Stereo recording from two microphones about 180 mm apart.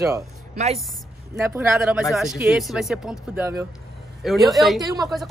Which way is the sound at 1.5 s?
10° right (ahead or behind).